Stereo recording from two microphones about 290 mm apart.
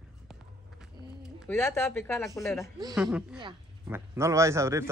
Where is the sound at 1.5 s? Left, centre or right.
Centre.